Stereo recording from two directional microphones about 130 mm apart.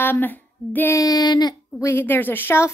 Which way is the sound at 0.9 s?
30° left (ahead or behind).